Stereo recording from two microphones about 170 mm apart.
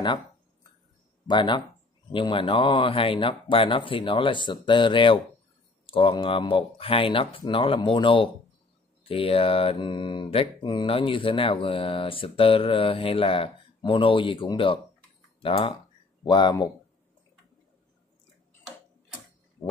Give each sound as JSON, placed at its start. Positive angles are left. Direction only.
{"t": 1.2, "sound": "speech", "side_deg": 30}
{"t": 2.1, "sound": "mantra", "side_deg": 30}
{"t": 15.4, "sound": "speech", "side_deg": 35}